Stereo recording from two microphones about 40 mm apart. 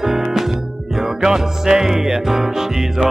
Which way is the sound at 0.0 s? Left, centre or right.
Centre.